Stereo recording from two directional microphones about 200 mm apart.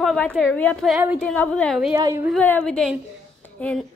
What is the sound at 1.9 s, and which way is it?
Speech, 15° right (ahead or behind).